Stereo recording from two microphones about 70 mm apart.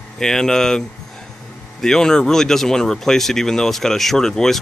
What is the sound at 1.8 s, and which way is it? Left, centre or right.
Speech, centre.